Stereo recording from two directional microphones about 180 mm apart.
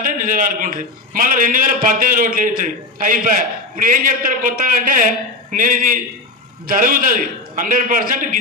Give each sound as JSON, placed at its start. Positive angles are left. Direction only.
{"t": 0.0, "sound": "a man's voice", "side_deg": -50}